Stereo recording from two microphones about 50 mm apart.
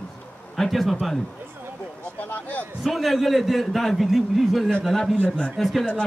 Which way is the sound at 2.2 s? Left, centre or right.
Left.